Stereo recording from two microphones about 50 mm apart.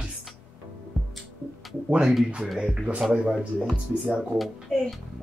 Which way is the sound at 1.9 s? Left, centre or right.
Centre.